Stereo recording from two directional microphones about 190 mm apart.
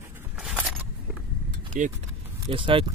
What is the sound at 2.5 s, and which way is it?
Speech, 30° right (ahead or behind).